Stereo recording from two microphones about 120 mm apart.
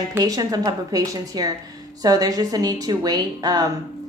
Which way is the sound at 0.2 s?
30° right (ahead or behind).